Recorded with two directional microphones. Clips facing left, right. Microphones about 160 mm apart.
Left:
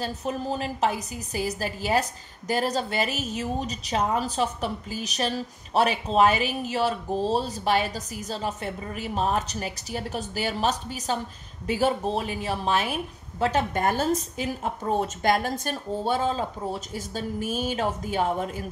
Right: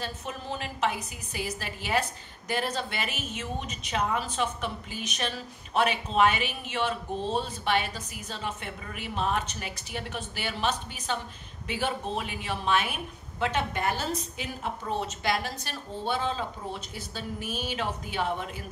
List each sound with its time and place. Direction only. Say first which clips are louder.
0.0 s a woman's voice: left 7 dB; 40° left (ahead or behind)